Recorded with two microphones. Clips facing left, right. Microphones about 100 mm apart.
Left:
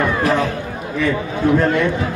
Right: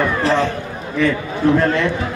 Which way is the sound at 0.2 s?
30° right (ahead or behind).